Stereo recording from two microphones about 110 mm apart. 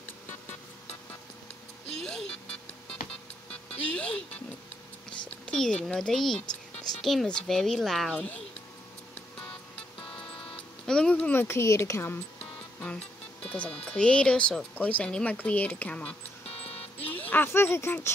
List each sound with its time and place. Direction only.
0.3 s music: 90° left
2.0 s music: 5° left (ahead or behind)
3.9 s music: 10° left (ahead or behind)
5.4 s a woman's voice: 5° left (ahead or behind)
10.9 s speech: 10° left (ahead or behind)
11.4 s a woman's voice: 25° left (ahead or behind)
12.8 s speech: 10° left (ahead or behind)
16.4 s music: 65° left (ahead or behind)
17.0 s speech: 15° left (ahead or behind)